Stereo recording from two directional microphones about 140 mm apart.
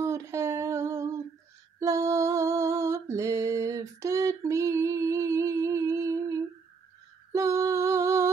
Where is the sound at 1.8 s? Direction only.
25° right (ahead or behind).